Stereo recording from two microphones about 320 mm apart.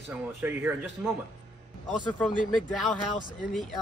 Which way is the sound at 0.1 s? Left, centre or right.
Centre.